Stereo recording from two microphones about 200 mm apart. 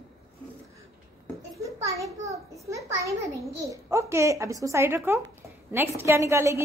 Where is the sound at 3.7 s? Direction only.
15° right (ahead or behind).